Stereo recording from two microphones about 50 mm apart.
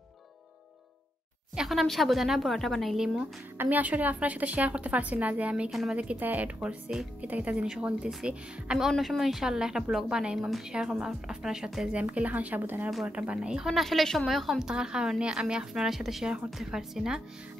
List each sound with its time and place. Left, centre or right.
1.7 s a woman's voice: centre
3.6 s a woman's voice: right
5.7 s a woman's voice: centre
6.1 s a woman's voice: right
8.2 s a woman's voice: centre
8.9 s a woman's voice: centre
11.9 s a woman's voice: right
13.3 s a woman's voice: centre
13.7 s a woman's voice: centre
14.7 s a woman's voice: centre